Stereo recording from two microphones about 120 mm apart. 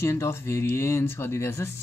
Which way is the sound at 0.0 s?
20° left (ahead or behind).